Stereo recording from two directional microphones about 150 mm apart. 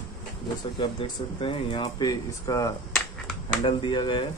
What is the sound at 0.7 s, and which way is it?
Speech, 35° left (ahead or behind).